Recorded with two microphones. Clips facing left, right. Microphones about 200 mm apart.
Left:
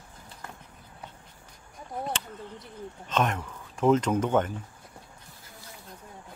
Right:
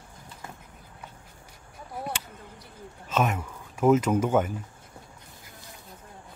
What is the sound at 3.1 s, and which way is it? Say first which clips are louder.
Speech: right 1 dB; 5° right (ahead or behind).